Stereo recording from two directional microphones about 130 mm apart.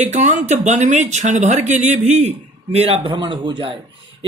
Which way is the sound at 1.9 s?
55° right (ahead or behind).